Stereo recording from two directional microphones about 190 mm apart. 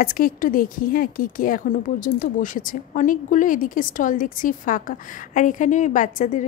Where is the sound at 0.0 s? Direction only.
50° left (ahead or behind).